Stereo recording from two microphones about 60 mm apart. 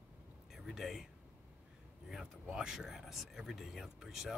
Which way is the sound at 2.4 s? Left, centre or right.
Centre.